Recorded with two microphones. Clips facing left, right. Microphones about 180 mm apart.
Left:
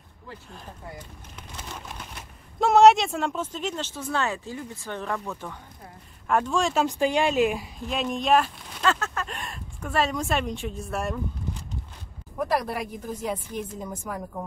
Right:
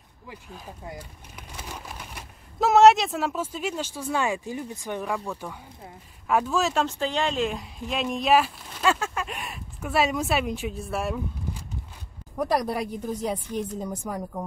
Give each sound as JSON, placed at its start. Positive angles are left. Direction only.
{"t": 0.3, "sound": "speech", "side_deg": -5}
{"t": 6.9, "sound": "speech", "side_deg": 10}
{"t": 12.4, "sound": "a woman's voice", "side_deg": -35}